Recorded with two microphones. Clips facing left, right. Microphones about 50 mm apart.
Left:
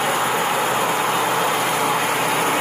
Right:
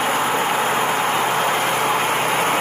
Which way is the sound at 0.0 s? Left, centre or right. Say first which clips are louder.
Right 1 dB; right.